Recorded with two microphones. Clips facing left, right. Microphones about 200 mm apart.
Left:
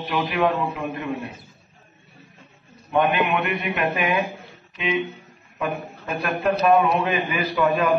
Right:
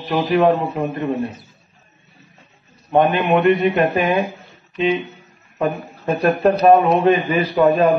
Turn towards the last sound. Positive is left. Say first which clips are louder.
# right 6 dB
turn(degrees=-35)  # may be behind; listen again after turning